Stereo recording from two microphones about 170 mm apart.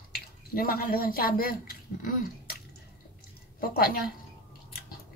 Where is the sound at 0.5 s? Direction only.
60° left (ahead or behind).